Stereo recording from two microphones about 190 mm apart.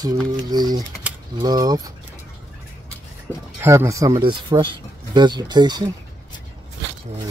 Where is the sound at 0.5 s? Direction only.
20° right (ahead or behind).